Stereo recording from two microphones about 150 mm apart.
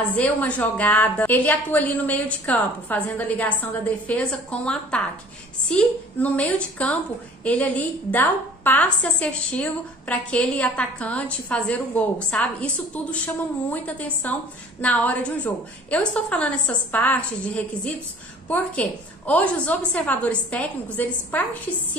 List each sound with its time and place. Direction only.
0.1 s a woman's voice: 10° left (ahead or behind)